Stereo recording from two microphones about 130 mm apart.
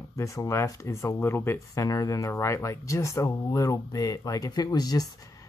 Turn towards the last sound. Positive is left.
turn(degrees=25)  # may be behind; listen again after turning